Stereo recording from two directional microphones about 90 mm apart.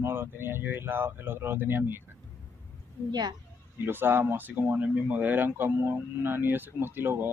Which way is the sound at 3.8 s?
25° right (ahead or behind).